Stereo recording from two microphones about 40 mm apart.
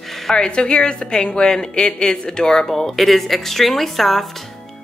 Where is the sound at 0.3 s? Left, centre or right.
Left.